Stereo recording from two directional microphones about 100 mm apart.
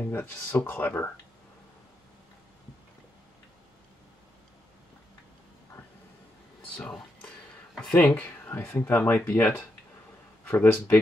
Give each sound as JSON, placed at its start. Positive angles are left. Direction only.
{"t": 0.0, "sound": "speech", "side_deg": 20}
{"t": 7.7, "sound": "speech", "side_deg": 10}
{"t": 8.5, "sound": "speech", "side_deg": 25}